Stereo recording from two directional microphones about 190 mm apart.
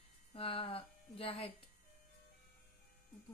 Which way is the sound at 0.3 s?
30° left (ahead or behind).